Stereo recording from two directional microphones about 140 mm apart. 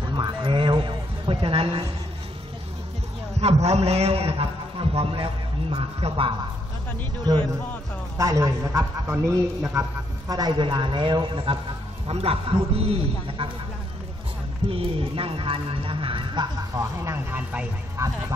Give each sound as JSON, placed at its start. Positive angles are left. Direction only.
{"t": 0.0, "sound": "a sound", "side_deg": -35}
{"t": 3.3, "sound": "a man's voice", "side_deg": -50}
{"t": 7.3, "sound": "a man's voice", "side_deg": -30}
{"t": 14.7, "sound": "speech", "side_deg": -40}
{"t": 16.7, "sound": "speech", "side_deg": -20}
{"t": 18.0, "sound": "a man's voice", "side_deg": -20}